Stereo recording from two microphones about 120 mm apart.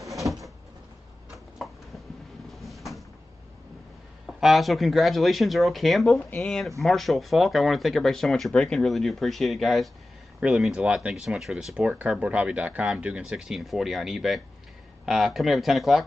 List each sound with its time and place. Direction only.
2.5 s cupboard open or close: centre (ahead or behind)
4.3 s speech: centre (ahead or behind)